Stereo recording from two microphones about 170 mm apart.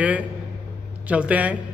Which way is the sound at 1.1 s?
10° right (ahead or behind).